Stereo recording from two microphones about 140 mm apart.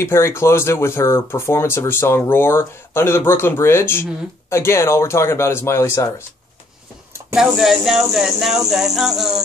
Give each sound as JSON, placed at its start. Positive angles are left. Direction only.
{"t": 0.0, "sound": "speech", "side_deg": 20}
{"t": 7.3, "sound": "speech", "side_deg": -5}